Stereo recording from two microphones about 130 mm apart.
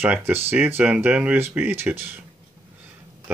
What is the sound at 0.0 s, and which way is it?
Speech, 15° right (ahead or behind).